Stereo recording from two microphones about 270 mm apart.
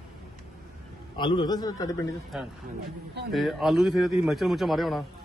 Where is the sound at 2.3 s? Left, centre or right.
Centre.